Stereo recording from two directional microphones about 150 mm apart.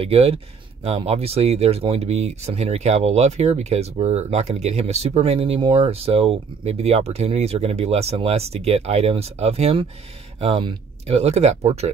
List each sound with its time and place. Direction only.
0.0 s speech: 40° right (ahead or behind)